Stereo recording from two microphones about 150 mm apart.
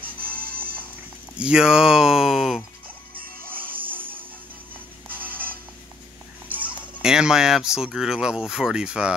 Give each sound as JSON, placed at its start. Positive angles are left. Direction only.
{"t": 0.4, "sound": "music", "side_deg": -80}
{"t": 1.4, "sound": "speech", "side_deg": -5}
{"t": 6.5, "sound": "speech", "side_deg": -10}